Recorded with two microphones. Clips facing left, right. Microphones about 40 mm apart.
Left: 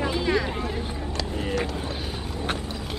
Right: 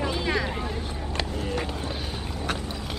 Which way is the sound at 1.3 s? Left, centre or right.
Left.